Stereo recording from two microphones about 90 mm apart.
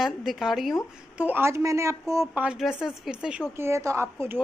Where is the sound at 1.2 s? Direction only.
20° right (ahead or behind).